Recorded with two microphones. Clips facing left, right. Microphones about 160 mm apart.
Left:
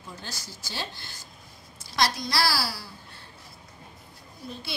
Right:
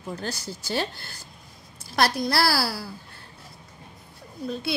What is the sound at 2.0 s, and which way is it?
Speech, 60° right (ahead or behind).